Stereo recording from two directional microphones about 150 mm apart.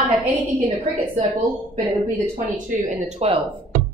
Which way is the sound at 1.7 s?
55° right (ahead or behind).